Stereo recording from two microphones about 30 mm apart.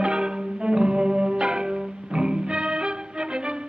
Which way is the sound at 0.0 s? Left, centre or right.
Right.